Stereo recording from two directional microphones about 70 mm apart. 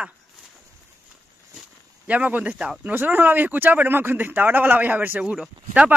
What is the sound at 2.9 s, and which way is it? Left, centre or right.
Speech, right.